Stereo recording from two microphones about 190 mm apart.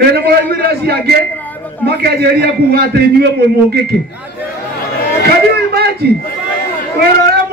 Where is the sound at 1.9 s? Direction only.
55° right (ahead or behind).